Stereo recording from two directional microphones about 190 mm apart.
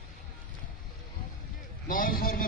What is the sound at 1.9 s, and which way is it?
Speech, 50° left (ahead or behind).